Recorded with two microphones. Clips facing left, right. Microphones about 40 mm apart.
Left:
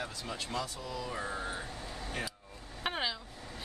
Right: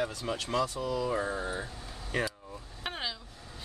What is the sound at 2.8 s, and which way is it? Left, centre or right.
Vehicle, centre.